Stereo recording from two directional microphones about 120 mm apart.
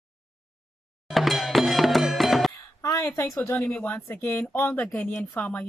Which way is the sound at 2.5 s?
25° left (ahead or behind).